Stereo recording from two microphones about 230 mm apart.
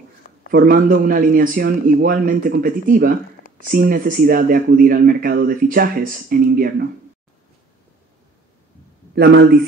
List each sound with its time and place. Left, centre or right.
0.5 s speech: right
9.1 s a man's voice: right